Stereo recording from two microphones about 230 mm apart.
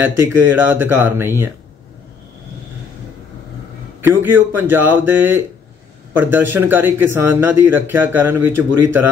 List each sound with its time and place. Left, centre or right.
0.0 s a man's voice: centre
4.0 s a man's voice: centre